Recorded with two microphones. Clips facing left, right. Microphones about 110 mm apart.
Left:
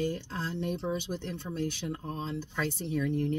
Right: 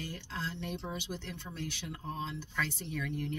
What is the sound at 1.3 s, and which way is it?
Speech, 35° left (ahead or behind).